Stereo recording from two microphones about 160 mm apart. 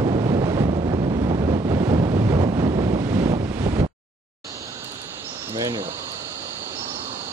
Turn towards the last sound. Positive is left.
turn(degrees=-20)  # may be behind; listen again after turning